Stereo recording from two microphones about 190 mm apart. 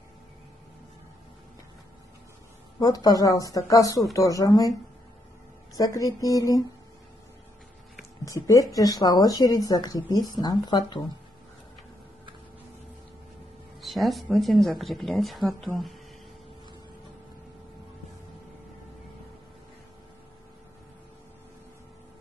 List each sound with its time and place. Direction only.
2.8 s speech: 20° left (ahead or behind)
5.8 s speech: 20° left (ahead or behind)
8.3 s speech: 20° left (ahead or behind)
13.7 s speech: centre (ahead or behind)